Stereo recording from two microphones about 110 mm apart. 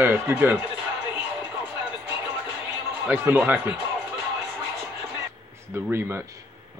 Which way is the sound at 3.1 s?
15° right (ahead or behind).